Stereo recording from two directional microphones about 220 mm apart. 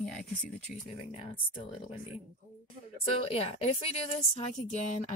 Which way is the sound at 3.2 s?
25° left (ahead or behind).